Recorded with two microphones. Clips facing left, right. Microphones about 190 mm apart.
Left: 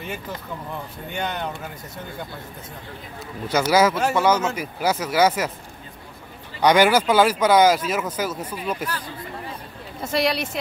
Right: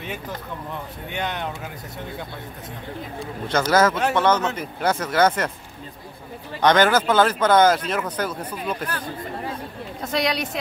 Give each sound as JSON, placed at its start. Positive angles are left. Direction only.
{"t": 1.1, "sound": "speech", "side_deg": 0}
{"t": 3.5, "sound": "speech", "side_deg": 10}
{"t": 6.6, "sound": "speech", "side_deg": 10}
{"t": 10.1, "sound": "speech", "side_deg": 5}